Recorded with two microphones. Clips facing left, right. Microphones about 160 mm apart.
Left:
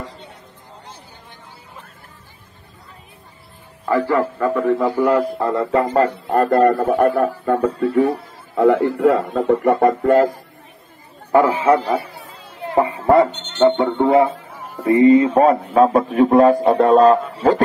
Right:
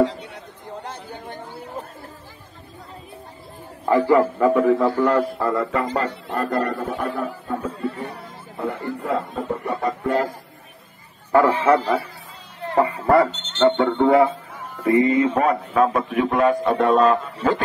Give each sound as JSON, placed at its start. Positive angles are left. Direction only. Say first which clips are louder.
{"t": 0.0, "sound": "a man's voice", "louder": "right 14 dB", "side_deg": -85}
{"t": 0.8, "sound": "chatter", "louder": "right 8 dB", "side_deg": -60}
{"t": 3.8, "sound": "a man's voice", "louder": "right 1 dB", "side_deg": -15}
{"t": 4.8, "sound": "a man's voice", "louder": "left 2 dB", "side_deg": 10}
{"t": 5.4, "sound": "speech", "louder": "left 4 dB", "side_deg": 25}
{"t": 6.2, "sound": "a man's voice", "louder": "left 9 dB", "side_deg": 50}
{"t": 11.4, "sound": "a man's voice", "louder": "left 1 dB", "side_deg": 10}
{"t": 12.0, "sound": "speech", "louder": "left 3 dB", "side_deg": 70}
{"t": 12.7, "sound": "speech", "louder": "left 3 dB", "side_deg": 20}
{"t": 13.3, "sound": "a sound", "louder": "left 3 dB", "side_deg": -90}
{"t": 13.6, "sound": "a man's voice", "louder": "left 2 dB", "side_deg": 20}